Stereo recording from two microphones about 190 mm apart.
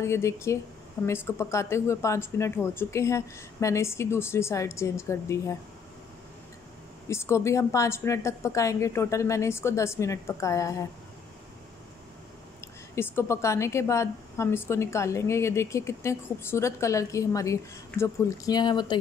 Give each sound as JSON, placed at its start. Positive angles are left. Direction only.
{"t": 0.0, "sound": "a woman's voice", "side_deg": 15}
{"t": 7.1, "sound": "a woman's voice", "side_deg": 15}
{"t": 12.9, "sound": "a woman's voice", "side_deg": 15}